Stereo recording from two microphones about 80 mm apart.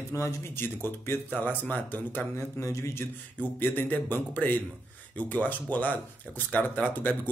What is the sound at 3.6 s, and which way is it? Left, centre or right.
Speech, left.